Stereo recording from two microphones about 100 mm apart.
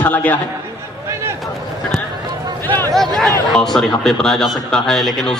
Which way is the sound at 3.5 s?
5° left (ahead or behind).